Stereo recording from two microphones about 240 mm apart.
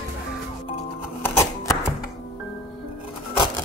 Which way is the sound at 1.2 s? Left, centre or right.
Centre.